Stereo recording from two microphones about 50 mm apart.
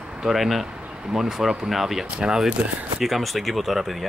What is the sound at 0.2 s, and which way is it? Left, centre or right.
Speech, centre.